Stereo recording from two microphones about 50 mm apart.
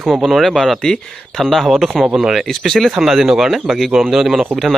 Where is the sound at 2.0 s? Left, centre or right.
Centre.